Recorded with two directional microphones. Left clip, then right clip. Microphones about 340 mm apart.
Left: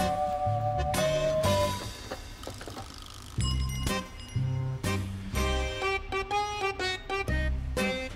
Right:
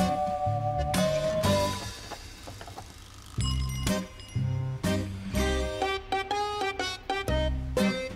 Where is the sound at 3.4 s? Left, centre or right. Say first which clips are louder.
Right 1 dB; centre.